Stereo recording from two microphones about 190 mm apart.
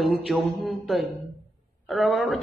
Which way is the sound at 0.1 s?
Centre (ahead or behind).